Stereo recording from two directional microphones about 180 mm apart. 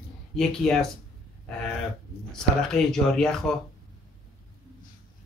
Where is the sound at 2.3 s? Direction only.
5° left (ahead or behind).